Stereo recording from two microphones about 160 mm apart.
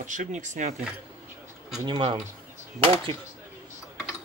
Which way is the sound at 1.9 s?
35° right (ahead or behind).